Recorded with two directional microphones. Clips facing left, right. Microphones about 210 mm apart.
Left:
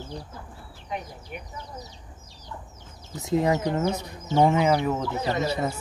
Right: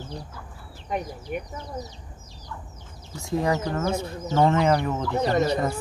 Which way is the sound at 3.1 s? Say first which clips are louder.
Left 2 dB; 20° left (ahead or behind).